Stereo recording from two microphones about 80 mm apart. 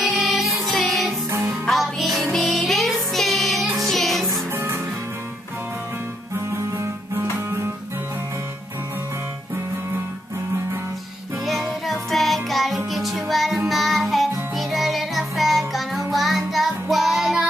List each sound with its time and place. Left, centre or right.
0.0 s music: centre
1.3 s music: right
1.7 s music: centre
4.3 s music: right
6.3 s music: right
11.8 s music: centre
13.7 s child singing: centre
14.5 s music: centre